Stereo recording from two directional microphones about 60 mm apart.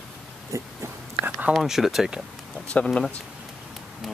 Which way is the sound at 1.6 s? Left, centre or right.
Centre.